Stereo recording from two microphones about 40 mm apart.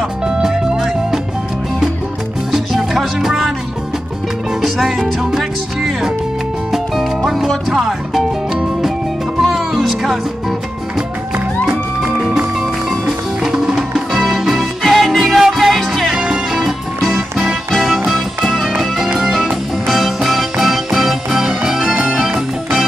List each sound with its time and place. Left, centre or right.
0.4 s music: centre
2.5 s music: centre
4.7 s music: centre
5.2 s music: centre
7.2 s music: centre
9.4 s music: centre
12.5 s music: centre
14.1 s music: centre